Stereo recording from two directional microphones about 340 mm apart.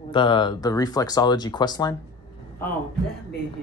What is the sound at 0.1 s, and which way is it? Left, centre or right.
Speech, centre.